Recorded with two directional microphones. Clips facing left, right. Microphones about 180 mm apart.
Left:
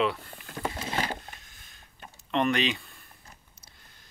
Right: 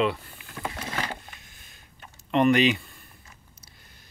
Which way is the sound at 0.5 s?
30° left (ahead or behind).